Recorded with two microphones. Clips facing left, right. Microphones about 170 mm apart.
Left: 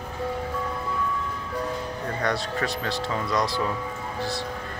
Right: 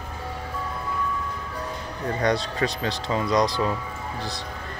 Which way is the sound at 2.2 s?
20° right (ahead or behind).